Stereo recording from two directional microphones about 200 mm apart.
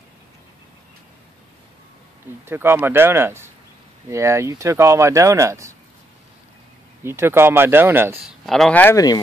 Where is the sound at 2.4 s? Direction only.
10° right (ahead or behind).